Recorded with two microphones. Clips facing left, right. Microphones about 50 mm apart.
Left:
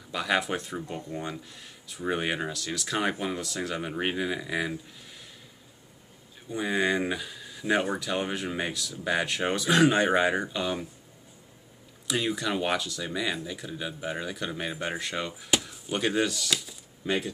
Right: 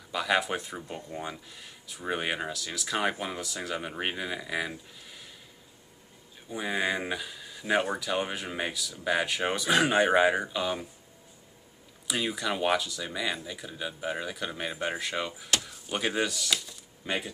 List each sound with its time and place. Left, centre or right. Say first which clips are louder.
0.1 s speech: even; centre
6.5 s speech: left 3 dB; centre
12.1 s speech: left 2 dB; centre